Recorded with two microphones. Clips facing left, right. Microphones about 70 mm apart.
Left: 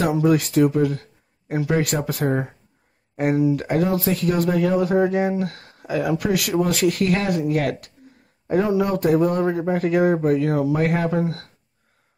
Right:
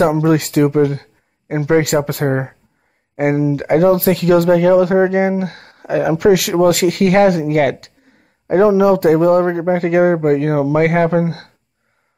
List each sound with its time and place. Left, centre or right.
0.0 s speech: right